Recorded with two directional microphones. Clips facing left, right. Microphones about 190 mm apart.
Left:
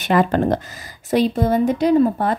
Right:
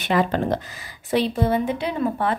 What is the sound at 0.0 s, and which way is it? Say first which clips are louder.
Speech: left 4 dB; 50° left (ahead or behind).